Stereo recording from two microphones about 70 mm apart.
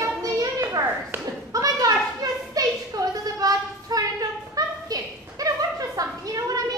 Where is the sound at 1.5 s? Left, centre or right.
Right.